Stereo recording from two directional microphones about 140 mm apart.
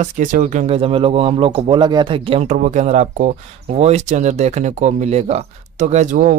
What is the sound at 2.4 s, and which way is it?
Speech, 55° right (ahead or behind).